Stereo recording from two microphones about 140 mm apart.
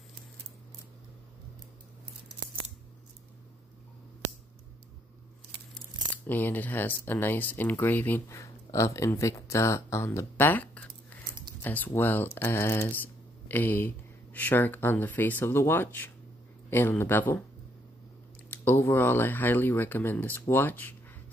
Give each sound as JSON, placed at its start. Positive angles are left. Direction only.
{"t": 6.2, "sound": "speech", "side_deg": 15}
{"t": 18.5, "sound": "speech", "side_deg": 15}